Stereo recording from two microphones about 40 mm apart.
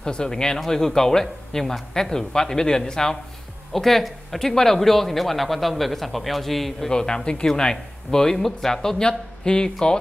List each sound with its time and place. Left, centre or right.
0.0 s a man's voice: left
3.7 s a man's voice: centre
6.9 s a man's voice: centre